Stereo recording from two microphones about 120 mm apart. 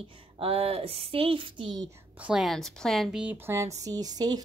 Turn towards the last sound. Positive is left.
turn(degrees=-30)  # may be behind; listen again after turning